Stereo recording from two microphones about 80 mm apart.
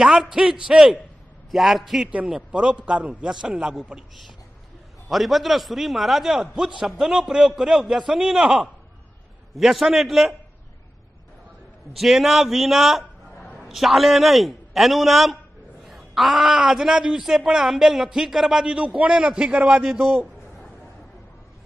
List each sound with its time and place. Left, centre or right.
0.0 s a man's voice: centre
5.1 s a man's voice: centre
12.0 s a man's voice: centre